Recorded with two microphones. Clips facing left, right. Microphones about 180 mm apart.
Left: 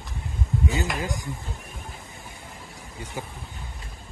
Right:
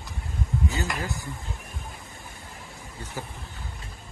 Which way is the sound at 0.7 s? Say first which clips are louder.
Left 3 dB; 15° left (ahead or behind).